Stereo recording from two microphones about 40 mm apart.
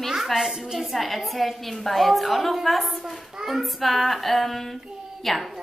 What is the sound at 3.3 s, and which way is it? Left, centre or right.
Speech, centre.